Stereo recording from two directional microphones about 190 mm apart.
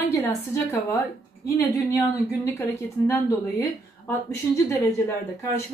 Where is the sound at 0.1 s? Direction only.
15° left (ahead or behind).